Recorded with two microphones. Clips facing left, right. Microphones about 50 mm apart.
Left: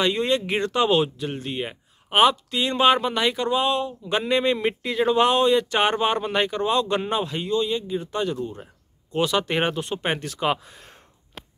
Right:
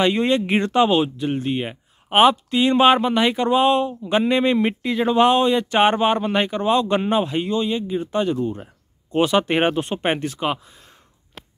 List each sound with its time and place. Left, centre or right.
0.0 s speech: centre
0.8 s speech: centre
10.6 s speech: left